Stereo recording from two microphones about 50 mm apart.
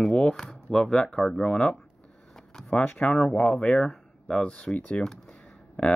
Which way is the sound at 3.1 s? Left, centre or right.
Centre.